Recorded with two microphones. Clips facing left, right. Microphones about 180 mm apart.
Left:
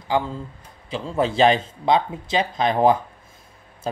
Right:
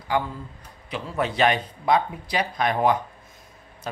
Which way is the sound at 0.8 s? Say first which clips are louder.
Left 4 dB; 30° left (ahead or behind).